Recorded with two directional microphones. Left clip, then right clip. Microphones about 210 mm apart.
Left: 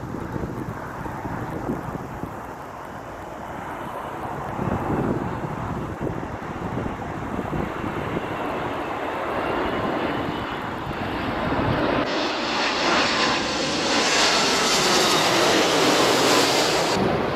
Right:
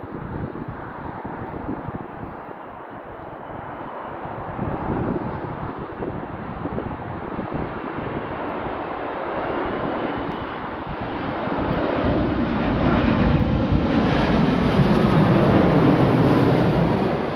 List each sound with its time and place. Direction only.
9.4 s vehicle: 15° left (ahead or behind)